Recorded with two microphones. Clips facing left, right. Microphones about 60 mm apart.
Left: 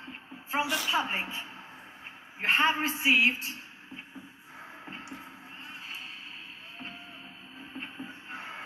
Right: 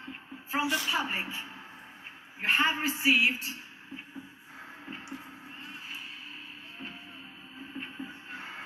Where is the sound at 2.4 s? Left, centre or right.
Left.